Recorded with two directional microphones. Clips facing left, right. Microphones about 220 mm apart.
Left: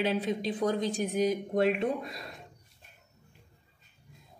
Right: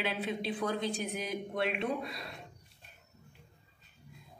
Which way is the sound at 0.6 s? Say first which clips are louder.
Left 6 dB; 20° left (ahead or behind).